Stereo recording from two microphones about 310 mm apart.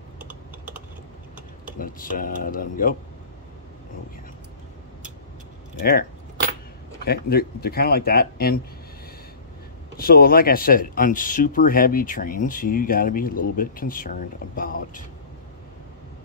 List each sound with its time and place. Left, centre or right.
1.8 s speech: left
5.8 s speech: left
7.1 s speech: left
9.9 s speech: left